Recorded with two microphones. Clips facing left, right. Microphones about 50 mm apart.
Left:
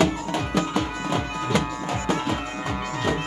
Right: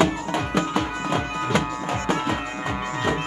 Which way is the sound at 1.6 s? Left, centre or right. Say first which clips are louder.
Right 1 dB; right.